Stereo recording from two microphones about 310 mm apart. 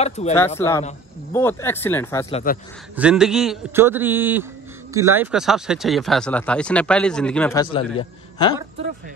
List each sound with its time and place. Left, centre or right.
0.0 s speech: centre
0.6 s speech: centre
2.3 s speech: left
3.0 s a man's voice: centre
7.7 s a man's voice: centre